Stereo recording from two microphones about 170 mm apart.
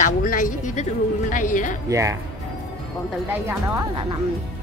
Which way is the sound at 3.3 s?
15° right (ahead or behind).